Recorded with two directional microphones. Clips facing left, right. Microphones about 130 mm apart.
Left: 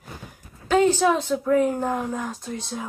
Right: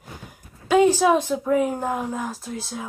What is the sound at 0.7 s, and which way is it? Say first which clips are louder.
A woman's voice: right 2 dB; 10° right (ahead or behind).